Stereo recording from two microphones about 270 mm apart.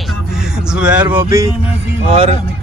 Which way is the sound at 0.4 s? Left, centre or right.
Centre.